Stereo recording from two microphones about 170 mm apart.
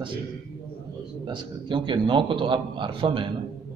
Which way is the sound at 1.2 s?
25° right (ahead or behind).